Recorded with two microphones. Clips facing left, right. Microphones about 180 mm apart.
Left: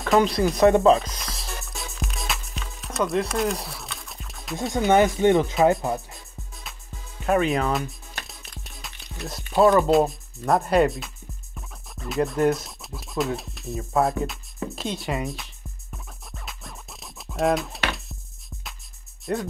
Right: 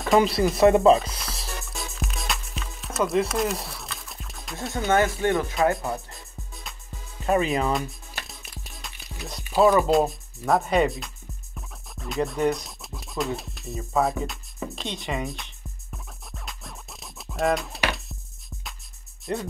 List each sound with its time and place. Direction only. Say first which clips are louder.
0.0 s music: even; centre (ahead or behind)
4.9 s speech: left 4 dB; 20° left (ahead or behind)
7.2 s music: left 1 dB; centre (ahead or behind)
9.4 s speech: left 1 dB; 5° right (ahead or behind)
11.5 s music: even; centre (ahead or behind)
19.3 s speech: left 2 dB; centre (ahead or behind)